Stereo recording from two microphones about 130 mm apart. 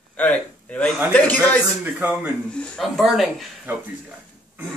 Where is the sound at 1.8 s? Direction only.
10° right (ahead or behind).